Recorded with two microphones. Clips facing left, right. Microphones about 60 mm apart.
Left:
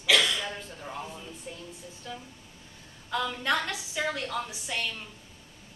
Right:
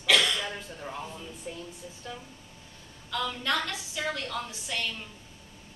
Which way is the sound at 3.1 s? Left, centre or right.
Centre.